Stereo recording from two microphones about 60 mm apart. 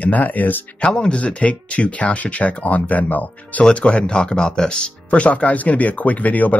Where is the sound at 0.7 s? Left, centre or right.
Centre.